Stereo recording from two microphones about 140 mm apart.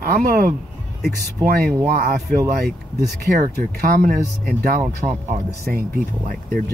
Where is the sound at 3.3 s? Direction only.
75° right (ahead or behind).